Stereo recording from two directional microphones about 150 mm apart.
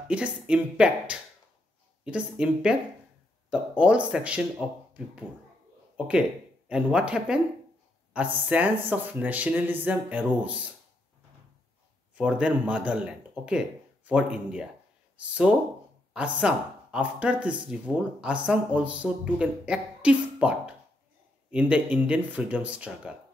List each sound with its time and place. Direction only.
0.1 s speech: 5° right (ahead or behind)
5.9 s speech: 5° right (ahead or behind)
12.2 s speech: 5° right (ahead or behind)
16.1 s speech: 5° right (ahead or behind)